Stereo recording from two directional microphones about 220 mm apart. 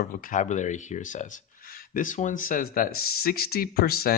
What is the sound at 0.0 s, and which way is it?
Speech, 40° left (ahead or behind).